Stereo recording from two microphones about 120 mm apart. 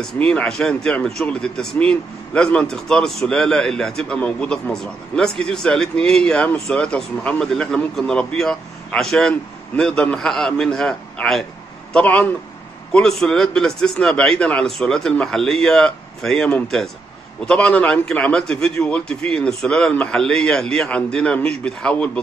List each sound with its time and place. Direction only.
0.0 s a man's voice: 5° left (ahead or behind)